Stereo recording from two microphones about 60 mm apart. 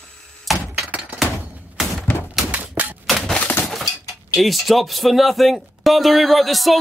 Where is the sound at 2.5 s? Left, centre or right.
Right.